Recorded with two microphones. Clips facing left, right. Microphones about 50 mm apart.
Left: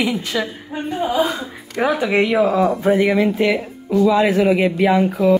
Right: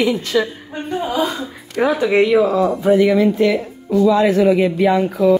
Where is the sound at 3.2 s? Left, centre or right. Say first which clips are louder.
Right 2 dB; centre.